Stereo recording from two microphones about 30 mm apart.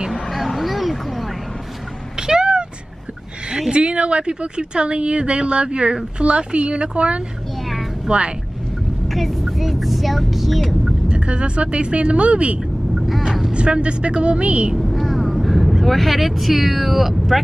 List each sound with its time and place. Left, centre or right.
0.1 s vehicle: centre
2.1 s meow: right
3.7 s speech: right
9.1 s vehicle: centre
11.1 s speech: right
12.9 s vehicle: centre
13.5 s speech: right
14.8 s vehicle: centre